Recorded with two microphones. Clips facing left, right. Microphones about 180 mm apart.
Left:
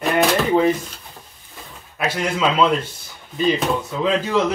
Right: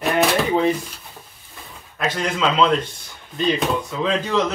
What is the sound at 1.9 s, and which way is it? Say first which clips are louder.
Speech: left 1 dB; 10° left (ahead or behind).